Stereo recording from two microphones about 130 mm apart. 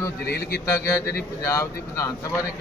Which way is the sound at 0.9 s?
20° left (ahead or behind).